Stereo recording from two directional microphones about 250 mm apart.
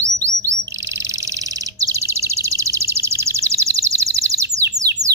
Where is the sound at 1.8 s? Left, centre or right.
Centre.